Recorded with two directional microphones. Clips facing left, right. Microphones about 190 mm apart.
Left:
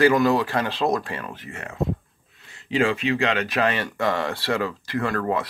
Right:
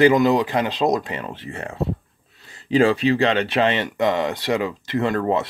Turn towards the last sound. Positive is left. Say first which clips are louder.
# right 4 dB
turn(degrees=-25)  # may be behind; listen again after turning